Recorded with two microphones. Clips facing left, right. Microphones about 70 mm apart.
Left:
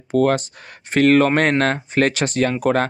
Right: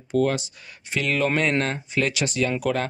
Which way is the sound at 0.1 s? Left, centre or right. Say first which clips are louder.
Left 5 dB; left.